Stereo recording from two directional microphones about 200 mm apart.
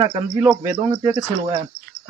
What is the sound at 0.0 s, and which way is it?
Speech, 25° right (ahead or behind).